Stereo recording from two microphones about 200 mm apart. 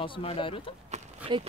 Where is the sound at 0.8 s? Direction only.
25° right (ahead or behind).